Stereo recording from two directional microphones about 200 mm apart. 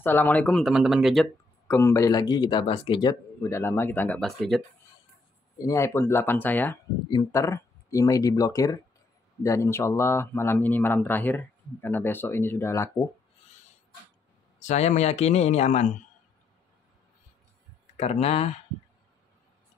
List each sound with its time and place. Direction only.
0.0 s speech: 10° left (ahead or behind)
1.8 s speech: 15° left (ahead or behind)
5.6 s speech: 15° left (ahead or behind)
14.6 s speech: 35° left (ahead or behind)
17.9 s speech: 30° left (ahead or behind)